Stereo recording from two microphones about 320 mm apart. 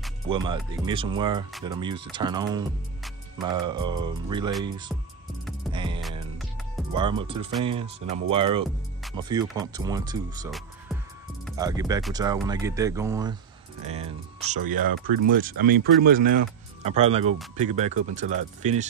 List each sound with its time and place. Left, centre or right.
0.3 s speech: centre
5.7 s music: centre
6.9 s speech: centre
10.9 s music: centre
11.5 s speech: centre